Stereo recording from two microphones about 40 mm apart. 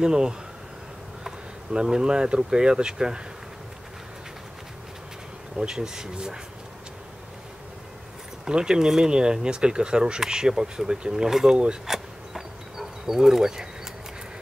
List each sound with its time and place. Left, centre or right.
0.0 s speech: centre
1.7 s speech: centre
5.6 s speech: centre
8.5 s speech: centre
11.8 s pulleys: centre